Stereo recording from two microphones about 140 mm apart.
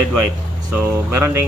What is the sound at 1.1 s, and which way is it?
Speech, 20° right (ahead or behind).